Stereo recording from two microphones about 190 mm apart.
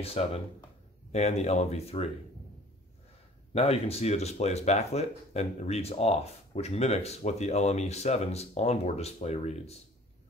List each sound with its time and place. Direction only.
0.0 s speech: 30° left (ahead or behind)
3.5 s speech: 35° left (ahead or behind)